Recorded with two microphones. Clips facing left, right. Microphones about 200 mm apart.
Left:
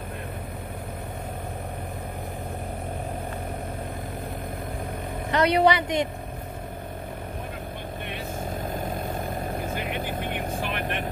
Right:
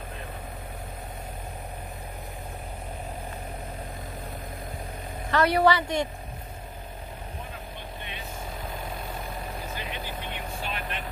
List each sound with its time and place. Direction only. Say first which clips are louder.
5.3 s a woman's voice: left 1 dB; 20° left (ahead or behind)
8.7 s vehicle: left 6 dB; 45° left (ahead or behind)